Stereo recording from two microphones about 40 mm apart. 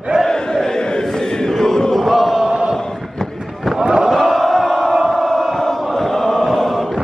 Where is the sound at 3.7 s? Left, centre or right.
Centre.